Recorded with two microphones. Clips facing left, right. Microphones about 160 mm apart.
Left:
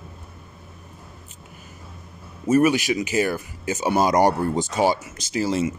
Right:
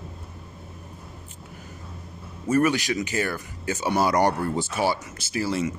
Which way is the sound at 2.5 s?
15° left (ahead or behind).